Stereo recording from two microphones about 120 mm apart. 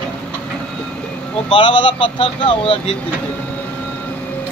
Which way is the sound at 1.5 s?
45° left (ahead or behind).